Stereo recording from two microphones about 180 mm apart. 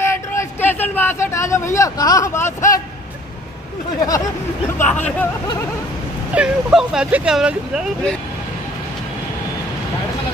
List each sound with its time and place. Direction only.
0.0 s speech: 15° left (ahead or behind)
4.7 s speech: 10° left (ahead or behind)
6.3 s speech: 5° right (ahead or behind)